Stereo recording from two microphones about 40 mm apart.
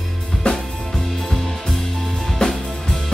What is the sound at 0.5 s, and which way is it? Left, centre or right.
Music, centre.